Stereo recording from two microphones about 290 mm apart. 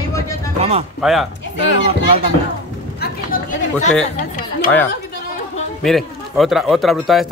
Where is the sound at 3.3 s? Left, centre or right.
Left.